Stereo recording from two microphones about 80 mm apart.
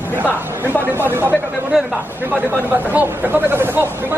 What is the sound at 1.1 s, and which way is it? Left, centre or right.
Speech, right.